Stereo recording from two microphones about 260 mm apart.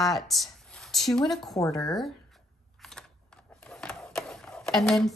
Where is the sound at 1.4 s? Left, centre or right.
Centre.